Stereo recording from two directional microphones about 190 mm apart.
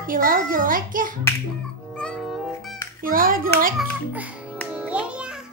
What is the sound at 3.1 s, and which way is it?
Speech, 45° right (ahead or behind).